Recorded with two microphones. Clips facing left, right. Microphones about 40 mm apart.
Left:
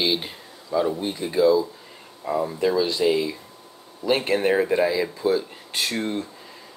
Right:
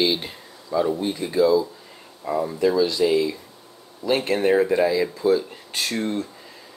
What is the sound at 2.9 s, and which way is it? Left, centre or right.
Speech, left.